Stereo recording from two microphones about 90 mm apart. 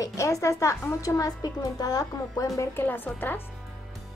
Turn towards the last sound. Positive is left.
turn(degrees=20)  # may be behind; listen again after turning